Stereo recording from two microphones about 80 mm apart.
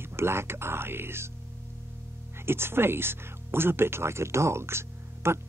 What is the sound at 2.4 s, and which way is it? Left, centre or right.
Speech, right.